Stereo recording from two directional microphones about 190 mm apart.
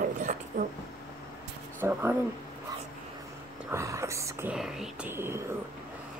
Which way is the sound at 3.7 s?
15° right (ahead or behind).